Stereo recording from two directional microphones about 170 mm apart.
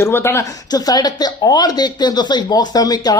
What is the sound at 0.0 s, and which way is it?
Speech, 15° left (ahead or behind).